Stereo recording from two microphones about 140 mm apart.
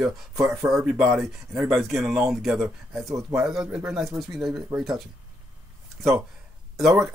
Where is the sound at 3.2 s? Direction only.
20° right (ahead or behind).